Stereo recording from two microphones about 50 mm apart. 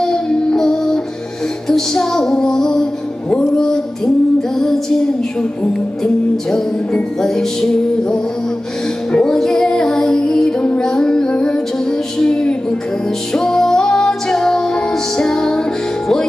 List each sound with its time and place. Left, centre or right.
0.0 s music: centre
5.4 s music: centre
7.2 s music: centre